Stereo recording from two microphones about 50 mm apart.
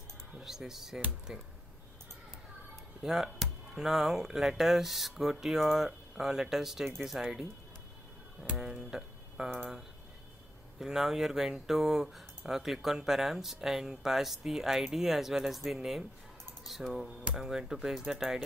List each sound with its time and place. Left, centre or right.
0.4 s speech: centre
1.3 s speech: centre
3.0 s speech: centre
8.5 s speech: centre